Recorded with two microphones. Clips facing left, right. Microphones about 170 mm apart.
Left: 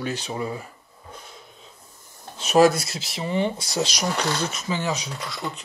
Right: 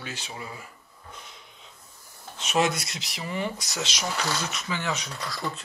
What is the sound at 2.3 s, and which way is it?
Speech, 35° left (ahead or behind).